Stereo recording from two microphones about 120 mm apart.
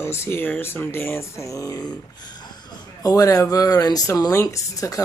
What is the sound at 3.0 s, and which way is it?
Speech, 30° left (ahead or behind).